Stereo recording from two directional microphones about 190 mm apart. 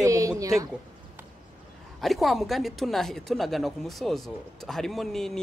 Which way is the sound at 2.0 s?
Centre (ahead or behind).